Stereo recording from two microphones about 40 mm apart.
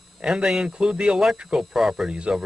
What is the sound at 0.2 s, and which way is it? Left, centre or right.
Speech, centre.